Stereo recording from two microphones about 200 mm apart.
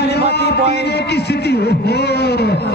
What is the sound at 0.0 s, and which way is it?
A man's voice, 55° left (ahead or behind).